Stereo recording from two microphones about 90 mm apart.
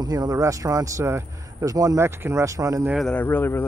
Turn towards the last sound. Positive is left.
turn(degrees=25)  # may be behind; listen again after turning